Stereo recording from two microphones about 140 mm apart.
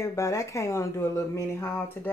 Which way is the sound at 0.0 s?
20° left (ahead or behind).